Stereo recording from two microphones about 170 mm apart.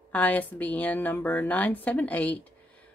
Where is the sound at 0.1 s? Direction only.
10° left (ahead or behind).